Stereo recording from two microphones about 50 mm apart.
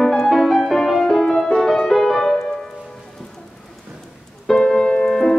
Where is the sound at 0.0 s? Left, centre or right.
Centre.